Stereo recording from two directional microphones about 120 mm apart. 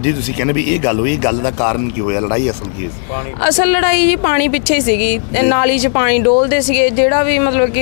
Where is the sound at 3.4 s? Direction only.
15° left (ahead or behind).